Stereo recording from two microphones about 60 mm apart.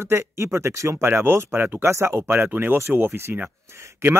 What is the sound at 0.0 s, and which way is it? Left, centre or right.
Speech, right.